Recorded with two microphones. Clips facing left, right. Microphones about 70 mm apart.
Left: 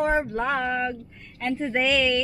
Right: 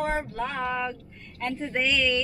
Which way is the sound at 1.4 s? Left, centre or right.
Centre.